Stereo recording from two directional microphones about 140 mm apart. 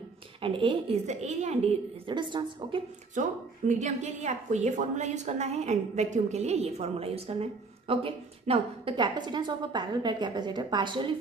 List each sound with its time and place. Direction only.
0.4 s a woman's voice: 40° right (ahead or behind)
1.0 s a woman's voice: 55° right (ahead or behind)
2.0 s a woman's voice: 35° right (ahead or behind)
3.2 s a woman's voice: 60° right (ahead or behind); by 11.1 s 35° right (ahead or behind)